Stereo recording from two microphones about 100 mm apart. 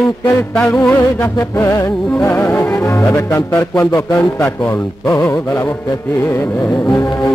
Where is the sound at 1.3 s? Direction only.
30° left (ahead or behind).